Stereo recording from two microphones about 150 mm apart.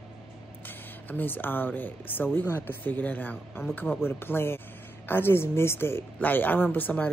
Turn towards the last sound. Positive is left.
turn(degrees=10)  # may be behind; listen again after turning